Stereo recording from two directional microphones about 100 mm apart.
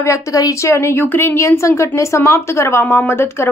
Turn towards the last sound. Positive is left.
turn(degrees=25)  # may be behind; listen again after turning